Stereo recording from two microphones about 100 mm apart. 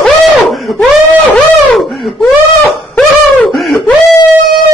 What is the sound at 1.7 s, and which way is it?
Wail, centre (ahead or behind).